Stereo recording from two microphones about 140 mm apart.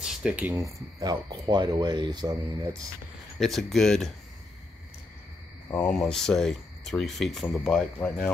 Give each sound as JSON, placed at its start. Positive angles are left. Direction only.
{"t": 0.0, "sound": "speech", "side_deg": -5}
{"t": 1.3, "sound": "speech", "side_deg": -30}
{"t": 3.3, "sound": "speech", "side_deg": 0}
{"t": 5.8, "sound": "speech", "side_deg": 5}